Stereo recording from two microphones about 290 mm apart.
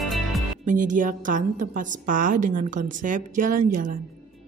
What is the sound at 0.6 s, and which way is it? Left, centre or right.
A woman's voice, right.